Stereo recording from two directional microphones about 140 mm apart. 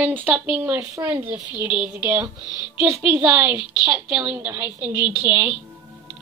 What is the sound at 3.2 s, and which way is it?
Speech, 15° right (ahead or behind).